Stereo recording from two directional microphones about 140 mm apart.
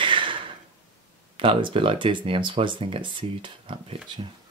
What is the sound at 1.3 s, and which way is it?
Speech, 40° right (ahead or behind).